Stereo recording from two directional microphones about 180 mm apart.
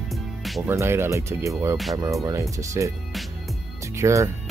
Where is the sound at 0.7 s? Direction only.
15° right (ahead or behind).